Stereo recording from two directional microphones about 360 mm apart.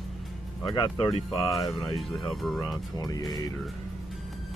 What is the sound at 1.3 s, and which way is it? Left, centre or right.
Speech, centre.